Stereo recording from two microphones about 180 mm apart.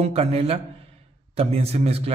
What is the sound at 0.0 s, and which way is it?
A man's voice, 35° right (ahead or behind).